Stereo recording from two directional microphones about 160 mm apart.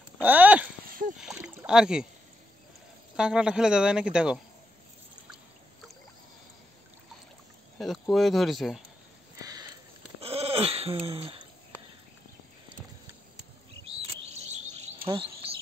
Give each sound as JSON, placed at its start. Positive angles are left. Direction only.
{"t": 0.2, "sound": "a sound", "side_deg": -10}
{"t": 0.8, "sound": "a sound", "side_deg": -60}
{"t": 1.1, "sound": "rowboat", "side_deg": -5}
{"t": 1.4, "sound": "rowboat", "side_deg": -15}
{"t": 1.7, "sound": "speech", "side_deg": -5}
{"t": 3.2, "sound": "speech", "side_deg": -5}
{"t": 7.8, "sound": "speech", "side_deg": 0}
{"t": 9.4, "sound": "sniff", "side_deg": -25}
{"t": 10.2, "sound": "sheep", "side_deg": -35}
{"t": 13.8, "sound": "chirp", "side_deg": -40}
{"t": 15.0, "sound": "bird", "side_deg": -35}